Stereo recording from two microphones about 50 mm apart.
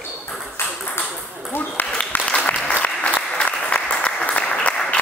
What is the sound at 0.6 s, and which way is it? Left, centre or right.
Ping, left.